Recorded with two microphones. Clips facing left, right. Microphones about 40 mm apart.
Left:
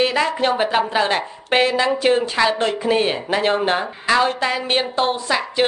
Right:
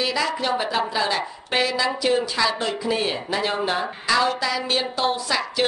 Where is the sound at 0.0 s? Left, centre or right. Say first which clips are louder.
Left 5 dB; left.